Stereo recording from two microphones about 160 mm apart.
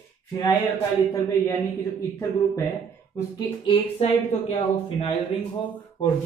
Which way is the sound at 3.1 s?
25° left (ahead or behind).